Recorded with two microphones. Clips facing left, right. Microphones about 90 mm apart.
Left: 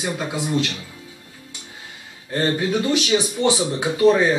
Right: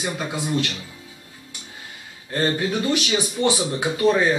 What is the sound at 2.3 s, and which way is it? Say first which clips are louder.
Speech: left 2 dB; 15° left (ahead or behind).